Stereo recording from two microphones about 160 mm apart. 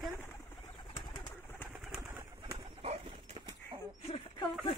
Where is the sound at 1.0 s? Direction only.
30° left (ahead or behind).